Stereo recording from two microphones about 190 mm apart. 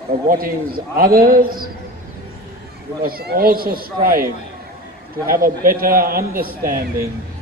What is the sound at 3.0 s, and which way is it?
A man's voice, 50° right (ahead or behind).